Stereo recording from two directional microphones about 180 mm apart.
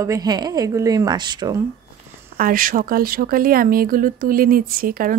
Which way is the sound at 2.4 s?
50° right (ahead or behind).